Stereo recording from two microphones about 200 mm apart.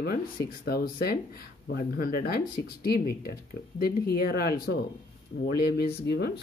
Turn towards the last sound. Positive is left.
turn(degrees=55)  # may be behind; listen again after turning